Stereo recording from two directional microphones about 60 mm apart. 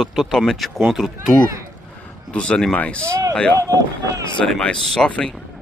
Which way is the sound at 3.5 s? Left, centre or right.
Right.